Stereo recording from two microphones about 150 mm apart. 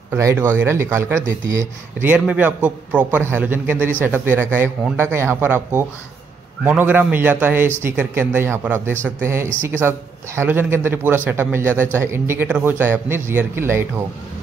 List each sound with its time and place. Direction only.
0.1 s speech: 20° right (ahead or behind)